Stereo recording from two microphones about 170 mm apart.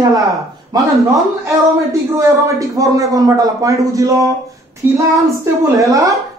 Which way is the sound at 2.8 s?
20° right (ahead or behind).